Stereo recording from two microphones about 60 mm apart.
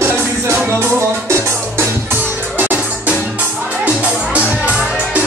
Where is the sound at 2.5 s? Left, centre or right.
Right.